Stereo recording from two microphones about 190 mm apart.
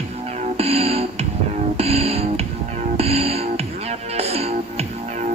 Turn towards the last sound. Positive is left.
turn(degrees=-30)  # may be behind; listen again after turning